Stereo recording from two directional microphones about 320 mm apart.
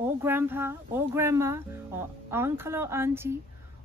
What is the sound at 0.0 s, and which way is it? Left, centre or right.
Speech, centre.